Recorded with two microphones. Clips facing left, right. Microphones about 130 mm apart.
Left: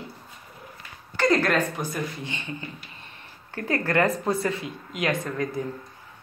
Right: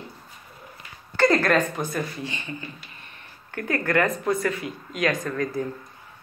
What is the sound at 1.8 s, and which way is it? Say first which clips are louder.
Speech: right 2 dB; 15° left (ahead or behind).